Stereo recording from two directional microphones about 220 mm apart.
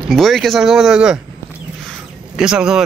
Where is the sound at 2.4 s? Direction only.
5° right (ahead or behind).